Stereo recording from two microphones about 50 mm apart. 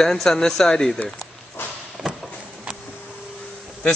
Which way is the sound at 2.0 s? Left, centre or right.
Centre.